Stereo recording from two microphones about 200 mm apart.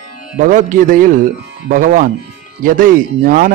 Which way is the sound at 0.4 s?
40° right (ahead or behind).